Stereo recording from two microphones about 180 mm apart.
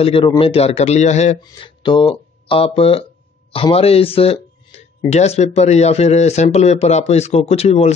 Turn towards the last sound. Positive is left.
turn(degrees=35)  # may be behind; listen again after turning